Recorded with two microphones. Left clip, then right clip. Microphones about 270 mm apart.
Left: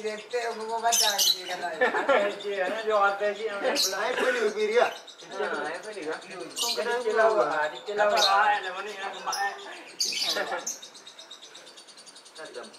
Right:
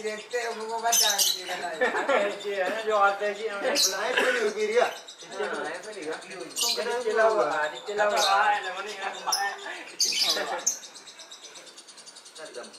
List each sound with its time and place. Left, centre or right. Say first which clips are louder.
0.0 s speech: even; centre
0.5 s speech: left 1 dB; centre
0.9 s speech: right 1 dB; centre
6.7 s speech: left 1 dB; centre
7.2 s speech: even; centre
10.3 s speech: right 1 dB; centre